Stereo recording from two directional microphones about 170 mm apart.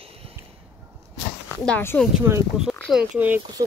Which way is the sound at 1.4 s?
10° left (ahead or behind).